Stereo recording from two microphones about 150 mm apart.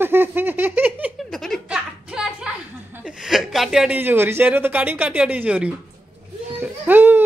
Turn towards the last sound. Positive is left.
turn(degrees=-10)  # may be behind; listen again after turning